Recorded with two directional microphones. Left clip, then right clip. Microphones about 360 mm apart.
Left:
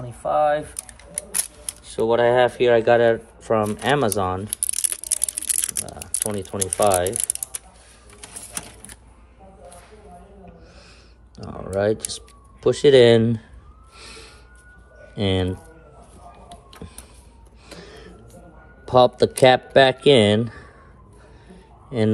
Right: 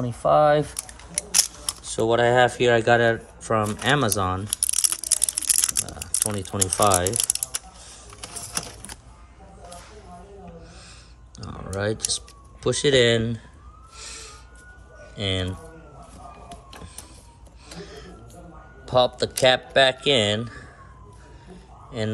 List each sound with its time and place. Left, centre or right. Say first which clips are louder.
0.0 s speech: right 2 dB; right
0.7 s scissors: right 3 dB; centre
1.9 s speech: left 2 dB; centre
8.2 s typing: right 4 dB; centre
11.3 s typing: left 7 dB; centre
12.6 s speech: left 6 dB; centre
13.9 s a sound: right 1 dB; centre
15.1 s speech: left 4 dB; centre
17.6 s a sound: right 1 dB; centre
18.9 s speech: left 5 dB; centre
21.5 s a sound: left 5 dB; centre